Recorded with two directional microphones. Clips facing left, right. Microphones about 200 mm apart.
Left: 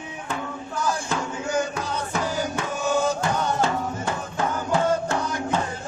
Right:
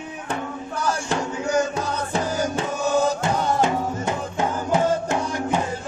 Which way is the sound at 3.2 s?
20° right (ahead or behind).